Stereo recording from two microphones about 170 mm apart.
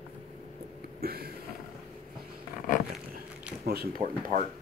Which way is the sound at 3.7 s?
65° right (ahead or behind).